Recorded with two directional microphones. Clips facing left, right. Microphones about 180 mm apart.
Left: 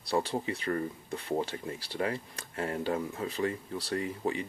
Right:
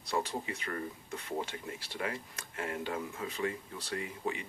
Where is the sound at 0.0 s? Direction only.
30° left (ahead or behind).